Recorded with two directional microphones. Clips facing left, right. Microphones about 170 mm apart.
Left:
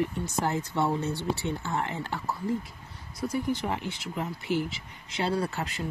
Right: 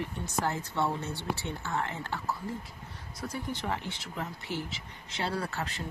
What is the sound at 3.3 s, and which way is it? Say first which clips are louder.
A woman's voice: left 5 dB; 10° left (ahead or behind).